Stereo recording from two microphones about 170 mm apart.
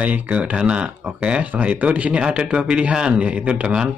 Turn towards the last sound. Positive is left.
turn(degrees=-5)  # may be behind; listen again after turning